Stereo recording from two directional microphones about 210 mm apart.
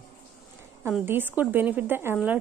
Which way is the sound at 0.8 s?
10° right (ahead or behind).